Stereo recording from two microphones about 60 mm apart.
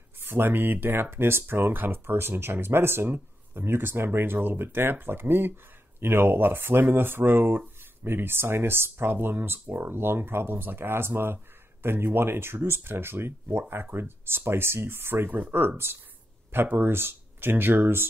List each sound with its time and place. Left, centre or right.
0.2 s speech: right